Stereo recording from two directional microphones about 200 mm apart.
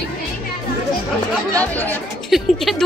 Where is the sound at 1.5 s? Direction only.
10° left (ahead or behind).